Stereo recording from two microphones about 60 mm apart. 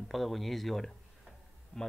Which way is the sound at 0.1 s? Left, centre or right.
Centre.